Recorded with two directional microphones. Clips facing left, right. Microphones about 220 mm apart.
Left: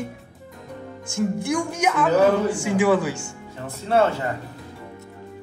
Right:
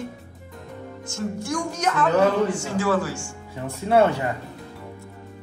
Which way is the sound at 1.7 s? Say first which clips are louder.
Even; 10° left (ahead or behind).